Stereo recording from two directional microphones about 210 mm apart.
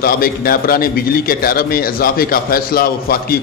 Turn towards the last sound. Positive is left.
turn(degrees=45)  # may be behind; listen again after turning